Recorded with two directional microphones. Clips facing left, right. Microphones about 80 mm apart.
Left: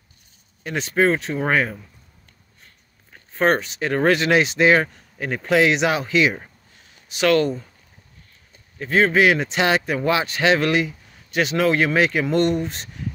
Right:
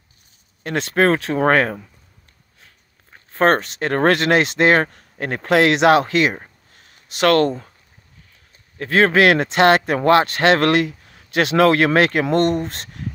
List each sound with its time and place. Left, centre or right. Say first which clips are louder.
0.7 s speech: right 2 dB; right
3.3 s speech: right 3 dB; right
4.8 s speech: right 3 dB; right
5.2 s speech: right 2 dB; right
8.7 s speech: right 2 dB; right